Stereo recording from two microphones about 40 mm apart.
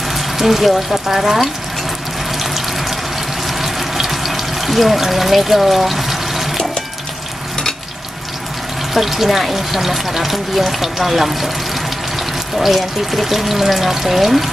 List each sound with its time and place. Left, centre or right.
0.1 s speech: centre
2.3 s water: centre
8.9 s speech: centre
12.5 s speech: centre